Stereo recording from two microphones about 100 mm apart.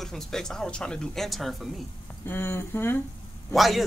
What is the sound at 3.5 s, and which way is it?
Speech, centre (ahead or behind).